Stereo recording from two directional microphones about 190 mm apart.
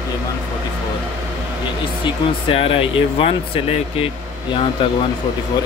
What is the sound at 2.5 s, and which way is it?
Speech, 30° left (ahead or behind).